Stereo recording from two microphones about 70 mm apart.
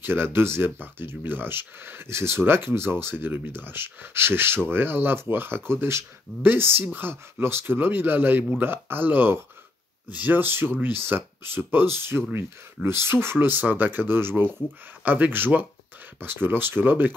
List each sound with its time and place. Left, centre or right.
0.0 s speech: right